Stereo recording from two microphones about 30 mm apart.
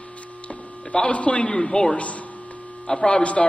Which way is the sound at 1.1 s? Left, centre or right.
Left.